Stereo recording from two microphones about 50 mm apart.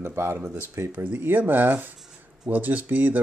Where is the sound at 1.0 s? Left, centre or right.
Right.